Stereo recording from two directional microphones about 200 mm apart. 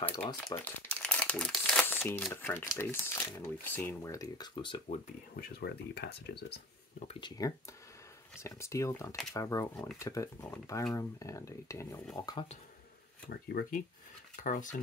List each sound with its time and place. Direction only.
0.1 s speech: 20° left (ahead or behind)
0.8 s crumpling: 5° left (ahead or behind)
2.3 s speech: 10° left (ahead or behind)
4.8 s speech: 45° left (ahead or behind)
7.1 s speech: 25° left (ahead or behind)
13.3 s speech: 50° left (ahead or behind)